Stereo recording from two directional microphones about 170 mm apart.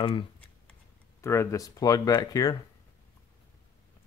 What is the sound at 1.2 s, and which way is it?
Speech, 15° left (ahead or behind).